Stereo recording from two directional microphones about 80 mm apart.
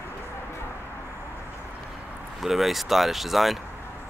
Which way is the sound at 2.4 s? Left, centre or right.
Centre.